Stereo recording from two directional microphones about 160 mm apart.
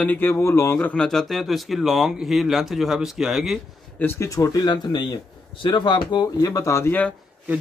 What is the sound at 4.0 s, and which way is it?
Speech, 15° left (ahead or behind).